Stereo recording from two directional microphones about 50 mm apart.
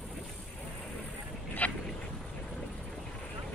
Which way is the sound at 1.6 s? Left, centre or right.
Left.